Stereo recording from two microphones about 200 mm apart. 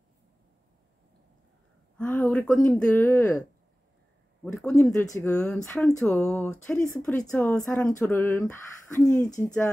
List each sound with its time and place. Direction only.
2.0 s speech: 5° left (ahead or behind)
4.6 s speech: centre (ahead or behind)
5.0 s speech: 15° left (ahead or behind)